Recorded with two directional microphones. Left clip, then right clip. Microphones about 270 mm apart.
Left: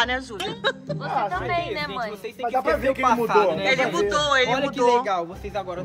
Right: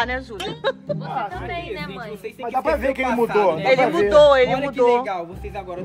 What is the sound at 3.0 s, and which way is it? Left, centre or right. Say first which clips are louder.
Speech: left 1 dB; centre.